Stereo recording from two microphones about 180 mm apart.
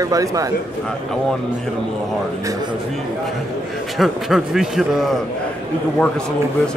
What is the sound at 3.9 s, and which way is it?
A man's voice, centre (ahead or behind).